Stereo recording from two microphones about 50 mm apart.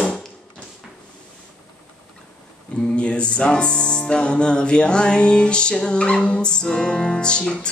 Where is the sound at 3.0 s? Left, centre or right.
Left.